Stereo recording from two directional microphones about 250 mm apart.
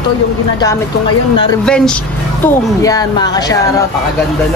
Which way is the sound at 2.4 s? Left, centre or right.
Centre.